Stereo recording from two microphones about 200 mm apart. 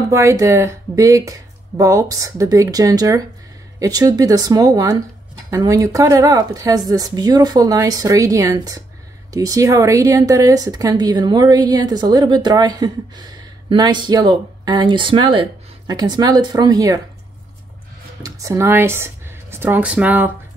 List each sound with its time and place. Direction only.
0.1 s a woman's voice: 15° right (ahead or behind)
18.2 s speech: 15° right (ahead or behind)